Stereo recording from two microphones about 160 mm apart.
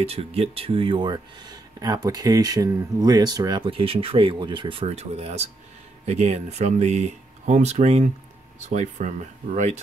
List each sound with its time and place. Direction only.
0.0 s speech: 40° right (ahead or behind)